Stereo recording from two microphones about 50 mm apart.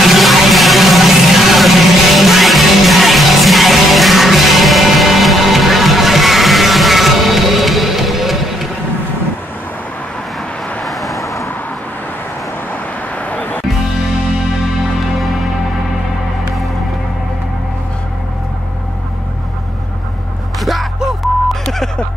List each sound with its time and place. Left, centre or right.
0.0 s music: centre
10.8 s vehicle: centre
13.2 s music: left
15.1 s music: centre
21.6 s a sound: centre